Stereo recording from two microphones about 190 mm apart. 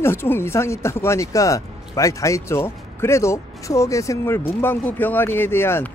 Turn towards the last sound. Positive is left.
turn(degrees=10)  # may be behind; listen again after turning